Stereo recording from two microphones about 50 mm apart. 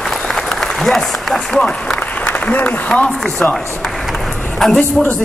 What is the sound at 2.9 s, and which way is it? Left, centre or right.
A woman's voice, centre.